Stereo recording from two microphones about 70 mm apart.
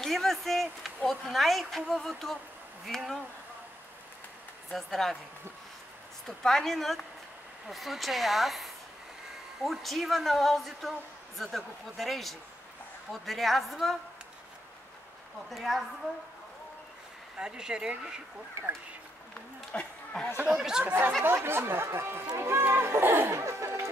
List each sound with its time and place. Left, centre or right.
0.0 s speech: centre
4.6 s speech: centre
6.2 s speech: centre
15.5 s speech: centre
17.4 s speech: centre
19.7 s a sound: centre
20.4 s speech: centre
20.8 s speech: right